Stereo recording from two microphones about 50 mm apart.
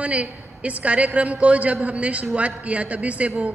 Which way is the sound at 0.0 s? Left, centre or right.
Right.